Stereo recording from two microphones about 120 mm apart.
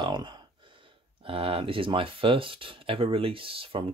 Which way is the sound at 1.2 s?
50° right (ahead or behind).